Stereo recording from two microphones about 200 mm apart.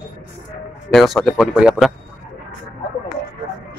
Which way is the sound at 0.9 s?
Centre (ahead or behind).